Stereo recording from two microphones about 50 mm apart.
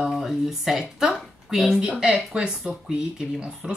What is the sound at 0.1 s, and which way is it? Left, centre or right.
Speech, centre.